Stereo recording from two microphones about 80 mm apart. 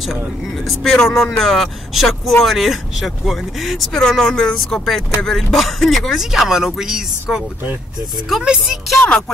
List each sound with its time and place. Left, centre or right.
1.0 s speech: centre